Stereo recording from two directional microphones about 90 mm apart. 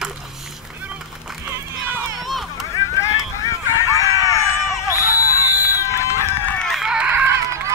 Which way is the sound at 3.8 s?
40° left (ahead or behind).